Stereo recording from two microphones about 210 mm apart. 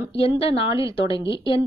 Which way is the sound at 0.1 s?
25° left (ahead or behind).